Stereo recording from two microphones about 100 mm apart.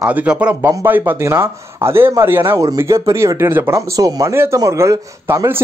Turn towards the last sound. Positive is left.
turn(degrees=-25)  # may be behind; listen again after turning